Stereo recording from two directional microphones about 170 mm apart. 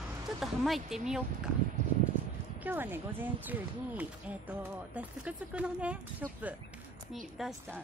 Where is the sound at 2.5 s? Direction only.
10° right (ahead or behind).